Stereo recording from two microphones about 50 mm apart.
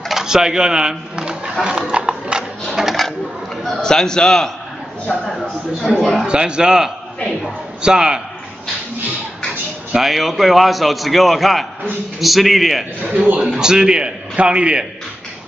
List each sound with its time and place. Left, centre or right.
0.1 s a sound: centre
2.7 s a sound: centre
3.6 s a man's voice: centre
6.2 s a man's voice: centre
10.0 s a man's voice: centre
13.0 s a man's voice: right
13.6 s a man's voice: centre